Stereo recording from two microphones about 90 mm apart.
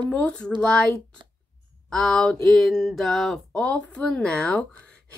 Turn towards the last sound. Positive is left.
turn(degrees=10)  # may be behind; listen again after turning